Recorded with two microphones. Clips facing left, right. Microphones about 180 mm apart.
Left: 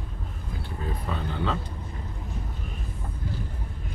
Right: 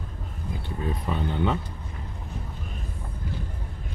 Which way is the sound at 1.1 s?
20° right (ahead or behind).